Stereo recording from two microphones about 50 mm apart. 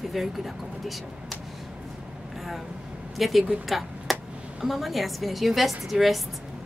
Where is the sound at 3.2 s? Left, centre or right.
Centre.